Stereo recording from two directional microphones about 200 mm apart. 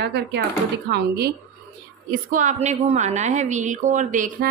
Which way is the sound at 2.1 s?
40° right (ahead or behind).